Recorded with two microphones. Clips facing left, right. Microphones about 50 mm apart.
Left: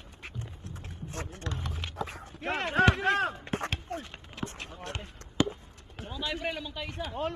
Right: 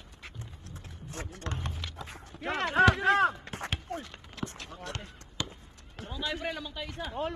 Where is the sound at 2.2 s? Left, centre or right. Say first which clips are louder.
Right 3 dB; left.